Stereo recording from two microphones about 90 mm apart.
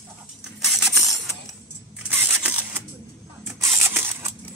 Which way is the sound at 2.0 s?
20° right (ahead or behind).